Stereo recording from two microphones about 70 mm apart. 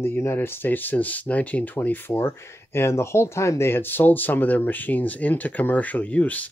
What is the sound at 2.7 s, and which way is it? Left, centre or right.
Speech, left.